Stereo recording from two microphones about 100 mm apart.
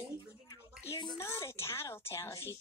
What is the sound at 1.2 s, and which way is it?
A woman's voice, 30° left (ahead or behind).